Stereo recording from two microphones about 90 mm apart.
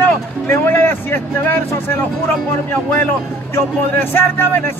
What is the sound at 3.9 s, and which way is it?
Speech, 25° left (ahead or behind).